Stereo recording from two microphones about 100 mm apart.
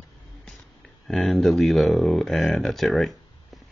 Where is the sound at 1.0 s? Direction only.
Centre (ahead or behind).